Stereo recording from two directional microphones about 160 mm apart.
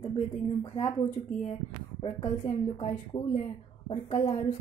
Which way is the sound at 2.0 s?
35° left (ahead or behind).